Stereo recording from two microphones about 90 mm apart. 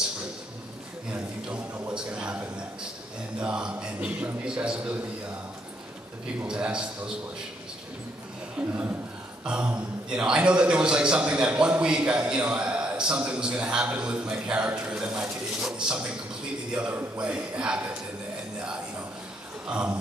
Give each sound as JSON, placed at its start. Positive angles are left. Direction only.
{"t": 1.1, "sound": "a sound", "side_deg": -15}
{"t": 3.3, "sound": "a man's voice", "side_deg": -10}
{"t": 6.4, "sound": "a man's voice", "side_deg": -10}
{"t": 8.5, "sound": "a man's voice", "side_deg": -15}
{"t": 16.7, "sound": "a man's voice", "side_deg": -10}